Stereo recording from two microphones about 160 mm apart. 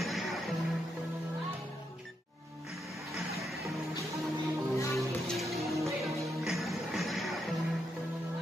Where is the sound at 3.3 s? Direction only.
Centre (ahead or behind).